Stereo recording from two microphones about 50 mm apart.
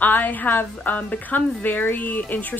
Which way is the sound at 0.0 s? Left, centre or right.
Left.